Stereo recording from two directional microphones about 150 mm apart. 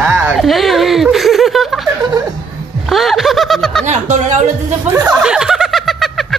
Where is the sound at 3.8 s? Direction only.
50° right (ahead or behind).